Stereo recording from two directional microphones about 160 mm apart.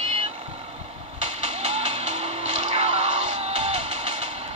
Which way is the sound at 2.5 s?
45° right (ahead or behind).